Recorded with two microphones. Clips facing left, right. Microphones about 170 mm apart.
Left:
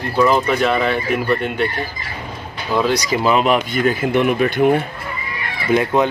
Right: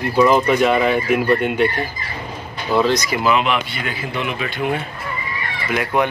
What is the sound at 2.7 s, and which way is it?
Speech, 5° right (ahead or behind).